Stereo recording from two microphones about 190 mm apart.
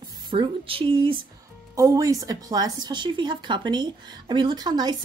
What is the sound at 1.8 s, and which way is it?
Speech, 15° right (ahead or behind).